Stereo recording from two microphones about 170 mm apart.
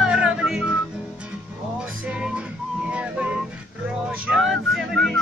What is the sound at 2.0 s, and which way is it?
Whistling, 5° right (ahead or behind).